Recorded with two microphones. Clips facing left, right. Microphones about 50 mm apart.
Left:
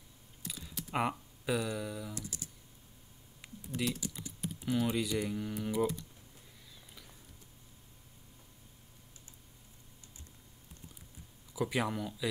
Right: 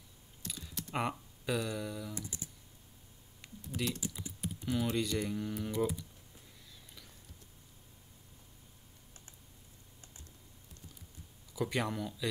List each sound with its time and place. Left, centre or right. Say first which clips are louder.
0.4 s typing: even; centre
2.1 s speech: even; right
3.6 s speech: left 1 dB; centre
11.5 s speech: left 1 dB; centre